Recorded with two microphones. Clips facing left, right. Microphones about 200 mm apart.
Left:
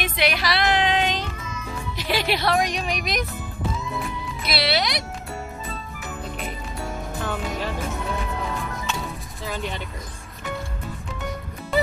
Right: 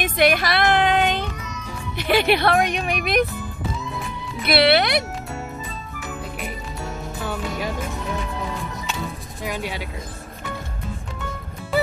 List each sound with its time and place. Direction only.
0.0 s a sound: 50° right (ahead or behind)
2.0 s speech: 60° right (ahead or behind)
4.4 s speech: 60° right (ahead or behind)
9.4 s speech: 10° right (ahead or behind)